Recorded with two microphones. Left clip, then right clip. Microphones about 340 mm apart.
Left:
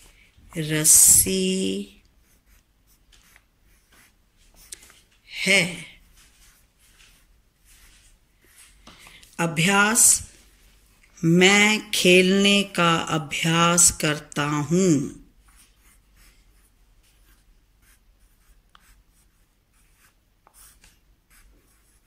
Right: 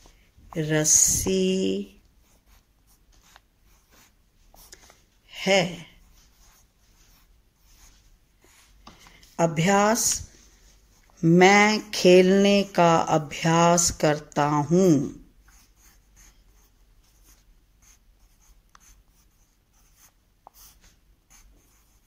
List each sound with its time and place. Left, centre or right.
0.5 s mantra: right
5.2 s a sound: right
9.1 s speech: right
11.1 s mantra: right